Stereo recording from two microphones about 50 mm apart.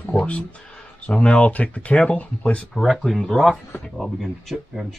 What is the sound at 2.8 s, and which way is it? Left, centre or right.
Speech, centre.